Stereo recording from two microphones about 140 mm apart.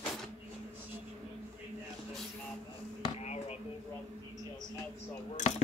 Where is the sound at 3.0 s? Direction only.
50° left (ahead or behind).